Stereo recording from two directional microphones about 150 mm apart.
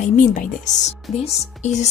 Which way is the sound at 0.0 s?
60° left (ahead or behind).